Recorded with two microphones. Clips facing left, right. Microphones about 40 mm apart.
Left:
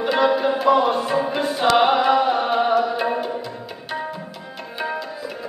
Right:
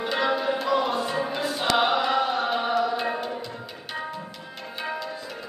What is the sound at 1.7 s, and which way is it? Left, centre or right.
Chant, left.